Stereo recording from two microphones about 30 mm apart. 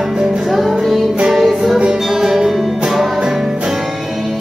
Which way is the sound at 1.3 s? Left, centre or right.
Centre.